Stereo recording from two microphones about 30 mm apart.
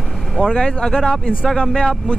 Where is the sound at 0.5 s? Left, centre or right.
Left.